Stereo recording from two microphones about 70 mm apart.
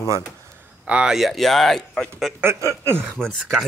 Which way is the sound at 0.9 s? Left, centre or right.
Centre.